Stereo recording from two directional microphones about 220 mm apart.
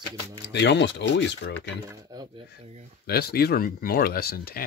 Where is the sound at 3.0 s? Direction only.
45° left (ahead or behind).